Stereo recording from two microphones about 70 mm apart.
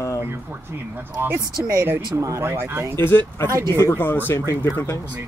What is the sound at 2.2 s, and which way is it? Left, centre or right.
Speech, right.